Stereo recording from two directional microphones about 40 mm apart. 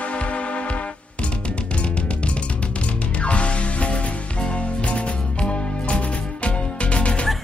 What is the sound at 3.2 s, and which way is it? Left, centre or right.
Music, left.